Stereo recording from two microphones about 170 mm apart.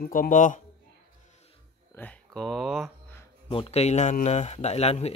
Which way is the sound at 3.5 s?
35° left (ahead or behind).